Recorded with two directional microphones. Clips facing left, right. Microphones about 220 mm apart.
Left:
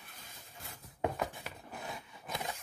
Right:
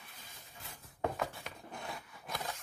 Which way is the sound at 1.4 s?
5° left (ahead or behind).